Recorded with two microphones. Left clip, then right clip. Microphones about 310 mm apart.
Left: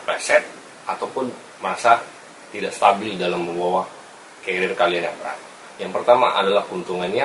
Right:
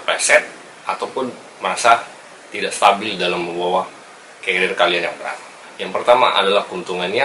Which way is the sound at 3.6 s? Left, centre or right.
Left.